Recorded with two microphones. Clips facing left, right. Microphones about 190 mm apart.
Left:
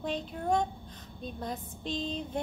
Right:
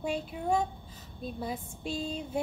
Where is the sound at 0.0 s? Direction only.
10° right (ahead or behind).